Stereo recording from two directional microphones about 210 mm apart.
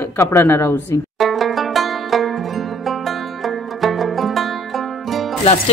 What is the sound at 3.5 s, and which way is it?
Music, centre (ahead or behind).